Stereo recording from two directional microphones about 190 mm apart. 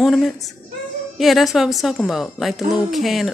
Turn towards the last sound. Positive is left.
turn(degrees=0)  # may be behind; listen again after turning